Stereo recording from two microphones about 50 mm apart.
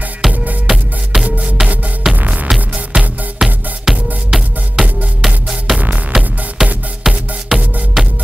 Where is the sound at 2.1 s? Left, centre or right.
Right.